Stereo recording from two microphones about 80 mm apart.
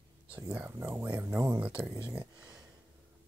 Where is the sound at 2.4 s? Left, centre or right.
Right.